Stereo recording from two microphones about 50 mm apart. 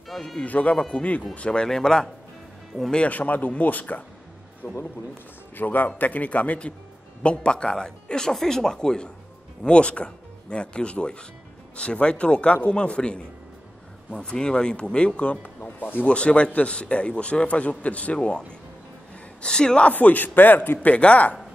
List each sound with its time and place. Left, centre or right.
0.4 s a man's voice: left
1.7 s speech: centre
3.1 s a man's voice: left
4.6 s speech: left
5.6 s a man's voice: left
7.2 s a man's voice: centre
15.8 s a man's voice: left
16.1 s a man's voice: left
19.4 s speech: centre
19.9 s a man's voice: left
20.8 s a man's voice: left